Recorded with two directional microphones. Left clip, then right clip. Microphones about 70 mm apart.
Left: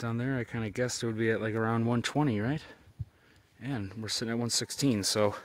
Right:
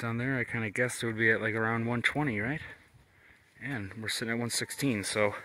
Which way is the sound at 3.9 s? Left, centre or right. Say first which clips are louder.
Even; left.